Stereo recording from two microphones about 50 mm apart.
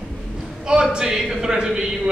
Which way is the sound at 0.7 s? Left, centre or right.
Centre.